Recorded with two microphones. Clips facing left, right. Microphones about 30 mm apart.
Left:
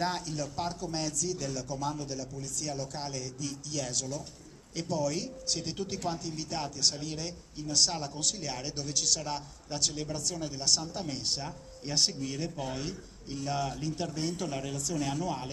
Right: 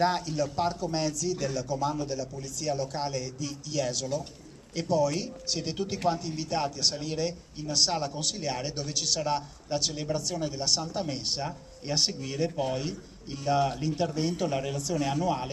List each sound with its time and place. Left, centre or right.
0.0 s speech: centre